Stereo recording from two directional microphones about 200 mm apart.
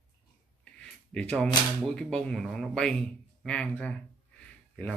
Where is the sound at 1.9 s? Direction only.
5° left (ahead or behind).